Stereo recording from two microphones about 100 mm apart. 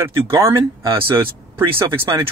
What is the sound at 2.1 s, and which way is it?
Speech, 40° right (ahead or behind).